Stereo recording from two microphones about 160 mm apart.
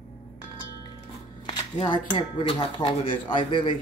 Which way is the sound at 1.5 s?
25° left (ahead or behind).